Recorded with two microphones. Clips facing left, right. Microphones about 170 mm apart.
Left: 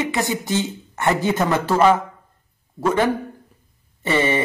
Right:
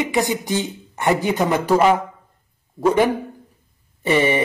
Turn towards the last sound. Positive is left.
turn(degrees=-15)  # may be behind; listen again after turning